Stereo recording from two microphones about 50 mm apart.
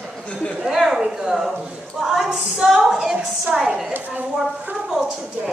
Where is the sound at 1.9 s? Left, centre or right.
Centre.